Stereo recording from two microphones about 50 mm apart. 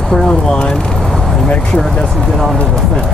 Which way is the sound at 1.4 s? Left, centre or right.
Left.